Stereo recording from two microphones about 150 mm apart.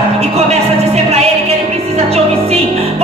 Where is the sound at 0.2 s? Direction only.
45° right (ahead or behind).